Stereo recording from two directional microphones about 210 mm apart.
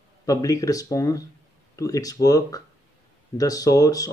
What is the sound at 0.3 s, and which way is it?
Speech, 15° left (ahead or behind).